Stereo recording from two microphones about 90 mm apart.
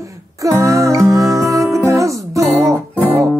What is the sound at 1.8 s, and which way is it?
Music, 35° right (ahead or behind).